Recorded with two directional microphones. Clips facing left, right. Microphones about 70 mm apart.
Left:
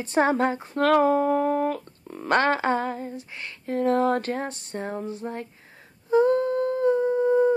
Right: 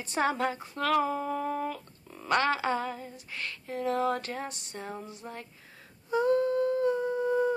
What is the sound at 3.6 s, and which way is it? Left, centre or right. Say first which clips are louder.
A woman's voice: left 7 dB; left.